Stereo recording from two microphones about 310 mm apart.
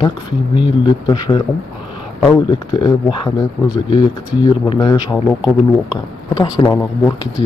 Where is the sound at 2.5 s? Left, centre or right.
Centre.